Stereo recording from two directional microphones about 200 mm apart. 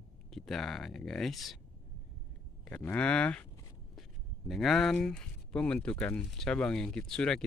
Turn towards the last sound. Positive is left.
turn(degrees=5)  # may be behind; listen again after turning